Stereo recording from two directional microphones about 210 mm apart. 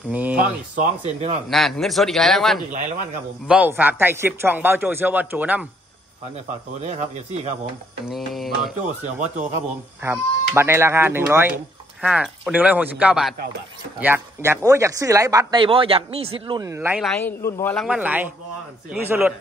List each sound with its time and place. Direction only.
0.1 s speech: 5° right (ahead or behind)
0.7 s speech: 35° right (ahead or behind)
1.5 s a man's voice: centre (ahead or behind)
6.3 s speech: 30° right (ahead or behind)
8.3 s a man's voice: centre (ahead or behind)
9.0 s speech: 35° right (ahead or behind)
10.0 s speech: 10° right (ahead or behind); by 16.3 s 25° right (ahead or behind)
16.4 s speech: 15° right (ahead or behind)
17.0 s a man's voice: 5° left (ahead or behind)
17.7 s speech: 5° right (ahead or behind)